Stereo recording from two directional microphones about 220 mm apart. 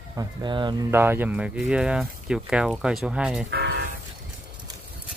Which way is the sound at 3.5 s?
50° right (ahead or behind).